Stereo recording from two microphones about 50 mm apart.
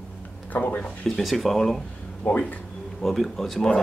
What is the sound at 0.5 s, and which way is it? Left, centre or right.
Speech, left.